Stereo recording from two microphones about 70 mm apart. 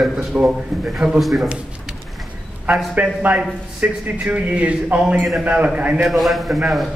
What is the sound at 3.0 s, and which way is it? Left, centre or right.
A man's voice, right.